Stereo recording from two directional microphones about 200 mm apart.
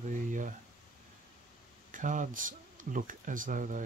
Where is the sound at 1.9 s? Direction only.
40° right (ahead or behind).